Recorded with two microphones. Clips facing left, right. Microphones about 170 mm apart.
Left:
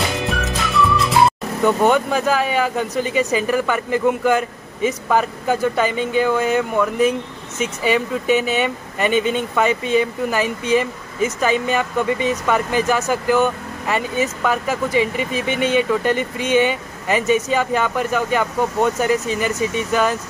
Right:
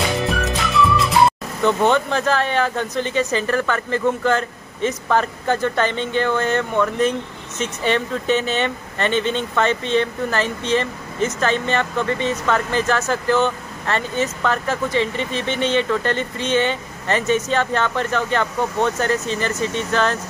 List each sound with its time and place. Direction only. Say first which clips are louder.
0.2 s music: right 1 dB; centre (ahead or behind)
1.6 s speech: left 1 dB; 10° left (ahead or behind)